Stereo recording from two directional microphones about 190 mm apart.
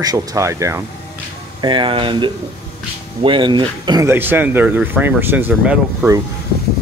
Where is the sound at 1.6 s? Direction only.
25° right (ahead or behind).